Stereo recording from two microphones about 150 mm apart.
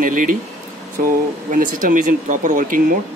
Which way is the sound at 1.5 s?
65° right (ahead or behind).